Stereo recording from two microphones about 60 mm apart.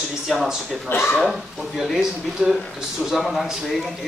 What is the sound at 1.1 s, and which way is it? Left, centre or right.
Speech, centre.